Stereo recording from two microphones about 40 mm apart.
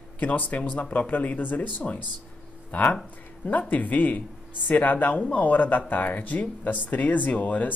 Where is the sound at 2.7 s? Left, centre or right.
Left.